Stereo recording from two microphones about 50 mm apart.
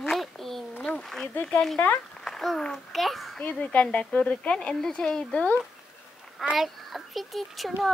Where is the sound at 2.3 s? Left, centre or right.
Centre.